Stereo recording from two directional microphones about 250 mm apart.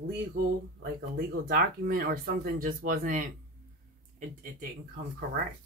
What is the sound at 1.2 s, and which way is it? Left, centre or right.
Speech, right.